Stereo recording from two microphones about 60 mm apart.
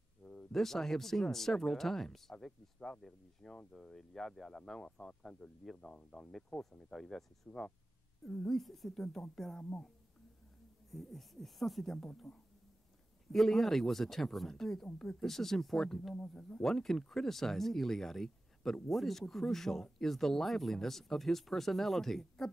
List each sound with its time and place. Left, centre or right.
0.2 s speech: centre
10.9 s speech: centre
16.2 s speech: left
16.6 s speech: centre